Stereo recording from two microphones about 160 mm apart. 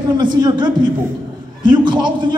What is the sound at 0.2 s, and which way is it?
Speech, 30° right (ahead or behind).